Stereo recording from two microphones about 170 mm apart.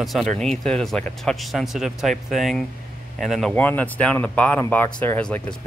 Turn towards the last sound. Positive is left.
turn(degrees=5)  # may be behind; listen again after turning